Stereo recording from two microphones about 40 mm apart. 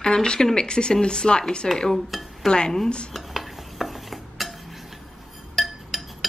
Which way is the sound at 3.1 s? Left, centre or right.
Centre.